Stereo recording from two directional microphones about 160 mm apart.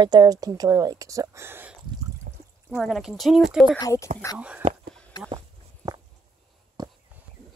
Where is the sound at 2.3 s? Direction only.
60° right (ahead or behind).